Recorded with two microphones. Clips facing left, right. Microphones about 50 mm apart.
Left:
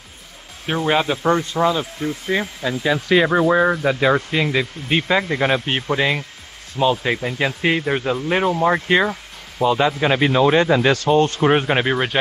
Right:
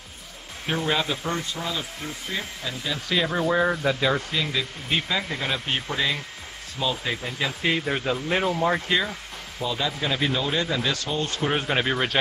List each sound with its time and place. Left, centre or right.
0.7 s speech: left
1.2 s speech: left
3.1 s speech: left
7.8 s speech: centre
8.8 s speech: left; by 12.2 s centre